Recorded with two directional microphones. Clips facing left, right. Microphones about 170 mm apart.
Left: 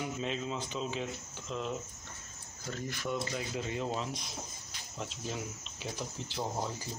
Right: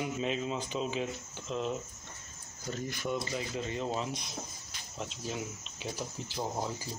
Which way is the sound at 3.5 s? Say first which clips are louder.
Right 1 dB; 5° left (ahead or behind).